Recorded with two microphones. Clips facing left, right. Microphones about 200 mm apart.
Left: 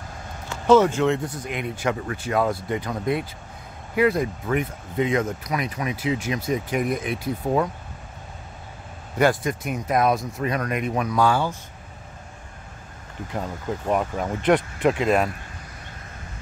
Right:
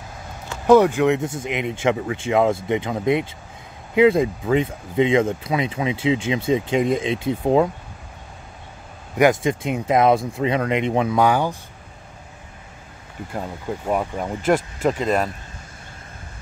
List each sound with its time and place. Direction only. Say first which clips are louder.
0.7 s speech: right 3 dB; 15° right (ahead or behind)
9.1 s speech: right 4 dB; 20° right (ahead or behind)
13.3 s speech: right 1 dB; 5° right (ahead or behind)